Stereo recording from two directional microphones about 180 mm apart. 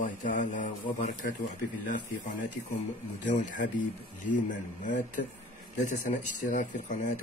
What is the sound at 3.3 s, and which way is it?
Speech, 45° left (ahead or behind).